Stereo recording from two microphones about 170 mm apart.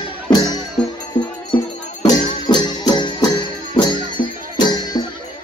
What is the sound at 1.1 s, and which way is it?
Music, 40° left (ahead or behind).